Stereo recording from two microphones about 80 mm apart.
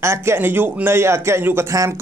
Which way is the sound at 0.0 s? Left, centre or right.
Right.